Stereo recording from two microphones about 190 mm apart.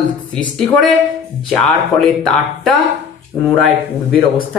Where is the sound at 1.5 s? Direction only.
Centre (ahead or behind).